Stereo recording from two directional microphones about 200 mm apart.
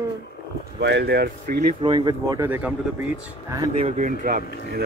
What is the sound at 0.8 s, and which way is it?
Speech, 55° right (ahead or behind).